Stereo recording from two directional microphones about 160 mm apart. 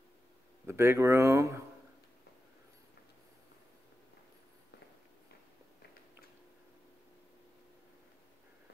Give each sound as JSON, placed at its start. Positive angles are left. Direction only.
{"t": 0.7, "sound": "speech", "side_deg": -15}